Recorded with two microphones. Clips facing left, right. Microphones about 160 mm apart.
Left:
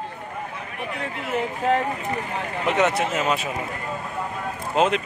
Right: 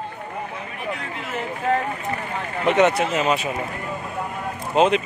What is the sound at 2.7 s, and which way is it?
Speech, centre (ahead or behind).